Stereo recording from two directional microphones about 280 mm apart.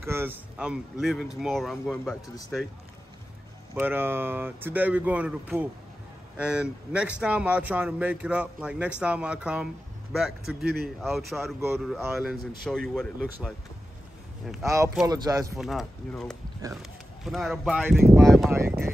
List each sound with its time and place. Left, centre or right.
0.0 s a man's voice: centre
3.7 s a man's voice: centre
10.6 s speech: right
11.0 s a man's voice: centre
15.5 s a man's voice: centre
18.5 s speech: centre